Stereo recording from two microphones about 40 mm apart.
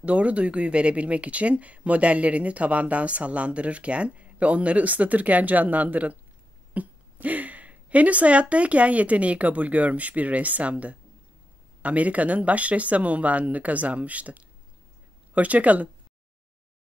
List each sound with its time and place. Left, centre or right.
0.0 s speech: right